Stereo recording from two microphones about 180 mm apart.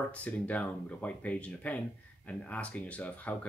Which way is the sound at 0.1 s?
5° left (ahead or behind).